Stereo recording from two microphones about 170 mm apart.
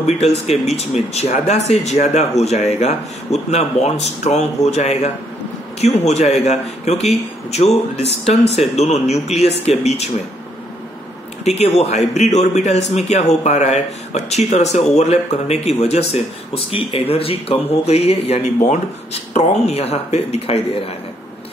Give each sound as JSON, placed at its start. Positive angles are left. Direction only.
{"t": 0.5, "sound": "a man's voice", "side_deg": 40}
{"t": 11.4, "sound": "a man's voice", "side_deg": 40}